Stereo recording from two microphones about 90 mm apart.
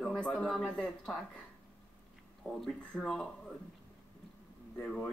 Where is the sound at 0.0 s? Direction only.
5° left (ahead or behind).